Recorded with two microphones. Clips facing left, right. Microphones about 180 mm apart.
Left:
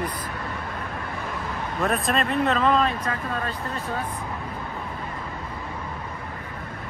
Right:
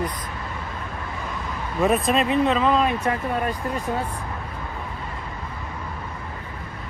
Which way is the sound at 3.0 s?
20° right (ahead or behind).